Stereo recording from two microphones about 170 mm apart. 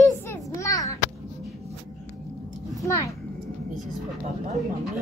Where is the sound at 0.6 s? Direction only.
20° left (ahead or behind).